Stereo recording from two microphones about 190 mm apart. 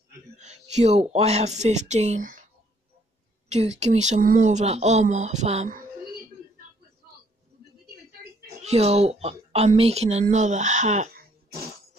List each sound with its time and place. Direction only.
0.4 s speech: 35° right (ahead or behind)
3.4 s speech: 35° right (ahead or behind)
8.6 s speech: 35° right (ahead or behind)